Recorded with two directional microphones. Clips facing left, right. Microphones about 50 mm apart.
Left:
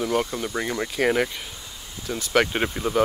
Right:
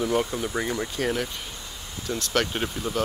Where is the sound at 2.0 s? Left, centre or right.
Centre.